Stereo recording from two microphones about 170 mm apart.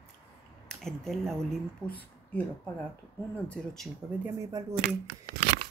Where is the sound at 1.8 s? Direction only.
15° right (ahead or behind).